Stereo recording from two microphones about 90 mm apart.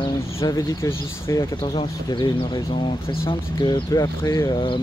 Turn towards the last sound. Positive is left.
turn(degrees=40)  # may be behind; listen again after turning